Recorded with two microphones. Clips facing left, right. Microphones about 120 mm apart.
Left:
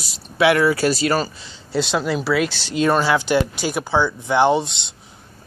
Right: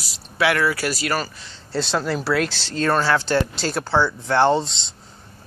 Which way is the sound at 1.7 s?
5° left (ahead or behind).